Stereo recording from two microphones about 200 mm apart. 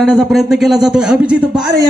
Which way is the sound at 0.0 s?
Centre (ahead or behind).